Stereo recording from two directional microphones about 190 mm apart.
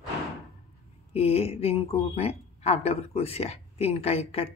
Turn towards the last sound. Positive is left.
turn(degrees=30)  # may be behind; listen again after turning